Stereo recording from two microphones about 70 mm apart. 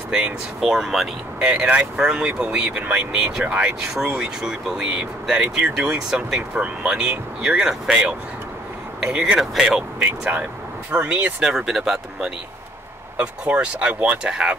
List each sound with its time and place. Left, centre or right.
0.1 s speech: centre
10.9 s speech: right
11.4 s speech: centre
13.2 s speech: centre